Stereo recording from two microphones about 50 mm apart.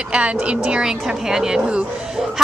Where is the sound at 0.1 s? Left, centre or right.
Right.